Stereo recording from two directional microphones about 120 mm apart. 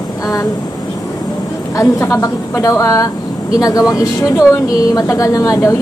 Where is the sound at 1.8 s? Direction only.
25° left (ahead or behind).